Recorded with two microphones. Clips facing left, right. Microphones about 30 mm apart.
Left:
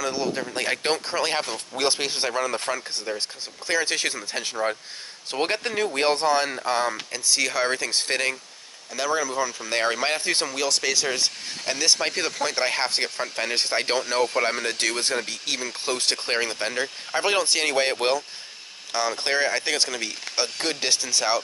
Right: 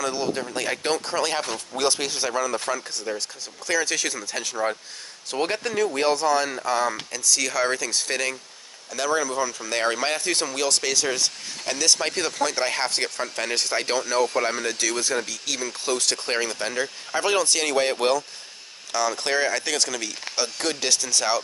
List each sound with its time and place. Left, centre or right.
0.0 s a sound: centre
0.6 s speech: left
1.0 s speech: centre
1.7 s speech: centre
2.1 s speech: left
5.6 s speech: left
8.9 s speech: centre
10.5 s speech: centre
12.4 s speech: centre
13.6 s speech: left